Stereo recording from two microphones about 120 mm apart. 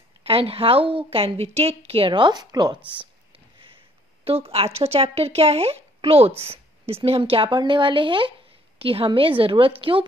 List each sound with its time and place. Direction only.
0.2 s a woman's voice: 55° right (ahead or behind); by 2.8 s 35° right (ahead or behind)
3.5 s a sound: 45° right (ahead or behind)
4.7 s a woman's voice: 60° right (ahead or behind)